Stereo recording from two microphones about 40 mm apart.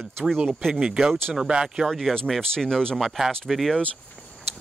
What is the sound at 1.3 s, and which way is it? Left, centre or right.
Speech, centre.